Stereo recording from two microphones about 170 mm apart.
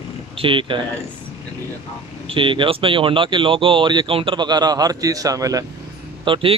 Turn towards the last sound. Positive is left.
turn(degrees=-30)  # may be behind; listen again after turning